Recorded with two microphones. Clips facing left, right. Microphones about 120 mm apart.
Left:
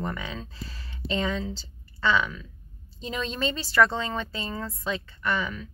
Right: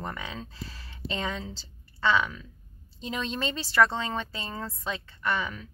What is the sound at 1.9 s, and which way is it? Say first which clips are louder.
Speech: even; 25° right (ahead or behind).